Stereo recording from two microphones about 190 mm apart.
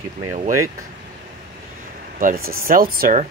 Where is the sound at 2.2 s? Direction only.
50° right (ahead or behind).